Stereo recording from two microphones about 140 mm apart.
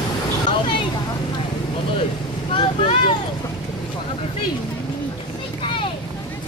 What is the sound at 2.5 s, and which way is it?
Vehicle, 40° left (ahead or behind).